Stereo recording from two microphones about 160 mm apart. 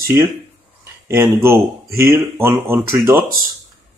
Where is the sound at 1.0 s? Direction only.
15° right (ahead or behind).